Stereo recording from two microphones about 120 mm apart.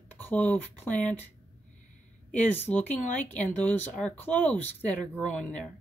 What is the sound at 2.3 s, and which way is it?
A woman's voice, 15° left (ahead or behind).